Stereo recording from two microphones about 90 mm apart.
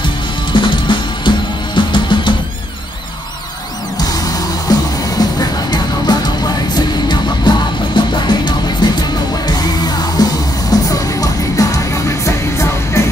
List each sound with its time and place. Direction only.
0.0 s music: 60° left (ahead or behind)
4.7 s music: 45° left (ahead or behind)
6.1 s music: 50° left (ahead or behind); by 13.0 s 30° left (ahead or behind)